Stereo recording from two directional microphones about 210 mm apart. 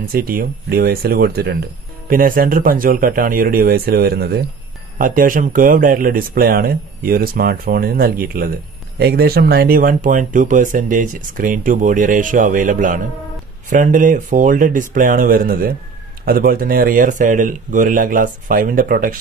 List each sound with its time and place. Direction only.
0.1 s speech: 45° right (ahead or behind)